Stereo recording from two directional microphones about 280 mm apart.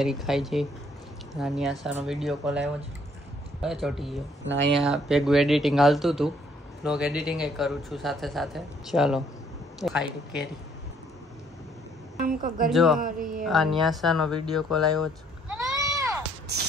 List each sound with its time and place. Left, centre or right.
0.0 s speech: centre
12.2 s a woman's voice: right
12.6 s speech: centre
13.0 s a sound: right
13.5 s speech: centre